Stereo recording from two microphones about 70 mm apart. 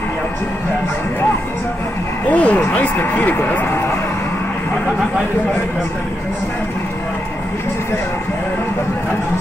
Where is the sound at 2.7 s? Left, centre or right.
Left.